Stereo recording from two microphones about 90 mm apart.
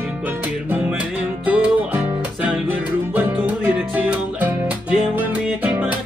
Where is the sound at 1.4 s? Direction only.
15° right (ahead or behind).